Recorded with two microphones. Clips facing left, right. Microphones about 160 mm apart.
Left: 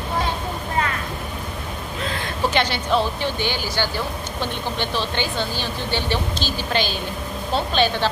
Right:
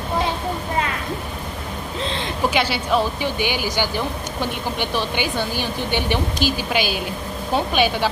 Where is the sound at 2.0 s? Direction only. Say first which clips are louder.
Right 1 dB; 25° right (ahead or behind).